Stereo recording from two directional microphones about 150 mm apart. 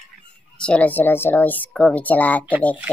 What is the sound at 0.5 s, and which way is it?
A woman's voice, 5° left (ahead or behind).